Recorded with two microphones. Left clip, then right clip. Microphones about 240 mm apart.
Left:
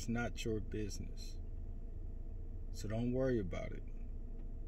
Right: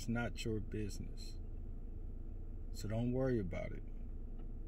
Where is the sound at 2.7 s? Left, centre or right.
Right.